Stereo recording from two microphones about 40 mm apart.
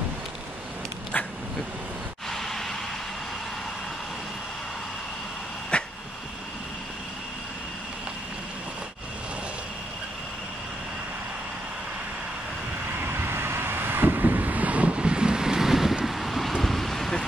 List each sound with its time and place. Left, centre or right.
1.1 s a sound: left
2.2 s vehicle: centre
5.7 s a sound: left
13.0 s vehicle: right
15.0 s wind noise: right; by 16.0 s centre
16.1 s vehicle: centre